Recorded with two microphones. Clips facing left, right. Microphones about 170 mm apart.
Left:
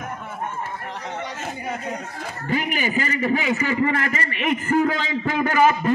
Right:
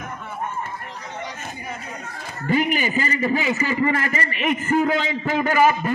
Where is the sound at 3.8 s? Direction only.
15° right (ahead or behind).